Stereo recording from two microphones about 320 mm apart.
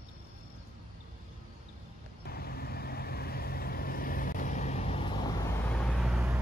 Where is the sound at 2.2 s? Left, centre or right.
Left.